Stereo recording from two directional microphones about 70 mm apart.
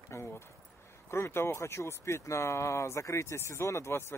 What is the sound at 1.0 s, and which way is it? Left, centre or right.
Speech, left.